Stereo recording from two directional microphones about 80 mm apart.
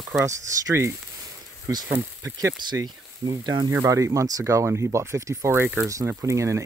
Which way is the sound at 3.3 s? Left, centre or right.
Right.